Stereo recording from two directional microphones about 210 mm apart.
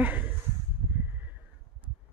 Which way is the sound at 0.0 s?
10° right (ahead or behind).